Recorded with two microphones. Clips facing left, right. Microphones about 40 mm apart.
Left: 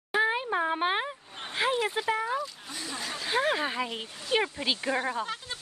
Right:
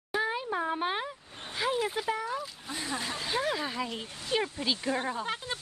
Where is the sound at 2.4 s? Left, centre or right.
Centre.